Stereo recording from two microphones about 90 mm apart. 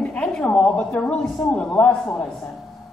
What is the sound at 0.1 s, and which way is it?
A woman's voice, 10° left (ahead or behind).